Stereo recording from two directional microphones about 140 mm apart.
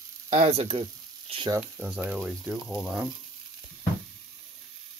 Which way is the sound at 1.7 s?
10° right (ahead or behind).